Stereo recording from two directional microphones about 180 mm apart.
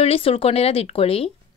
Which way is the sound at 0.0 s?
30° left (ahead or behind).